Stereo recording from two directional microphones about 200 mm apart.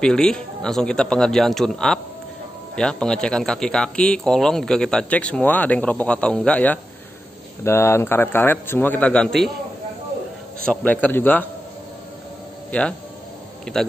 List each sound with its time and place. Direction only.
0.0 s a man's voice: 5° left (ahead or behind)
10.7 s a man's voice: 10° left (ahead or behind)
13.7 s speech: 5° left (ahead or behind)